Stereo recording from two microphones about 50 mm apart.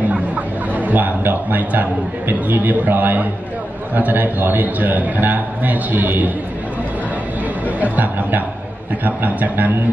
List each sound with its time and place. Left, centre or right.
0.7 s a man's voice: right
7.6 s a man's voice: right